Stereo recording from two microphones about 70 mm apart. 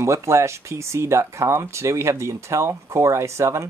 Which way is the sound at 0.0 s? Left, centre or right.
Right.